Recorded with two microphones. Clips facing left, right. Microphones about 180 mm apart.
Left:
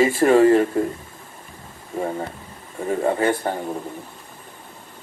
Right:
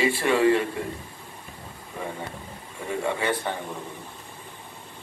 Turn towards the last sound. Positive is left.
turn(degrees=40)  # may be behind; listen again after turning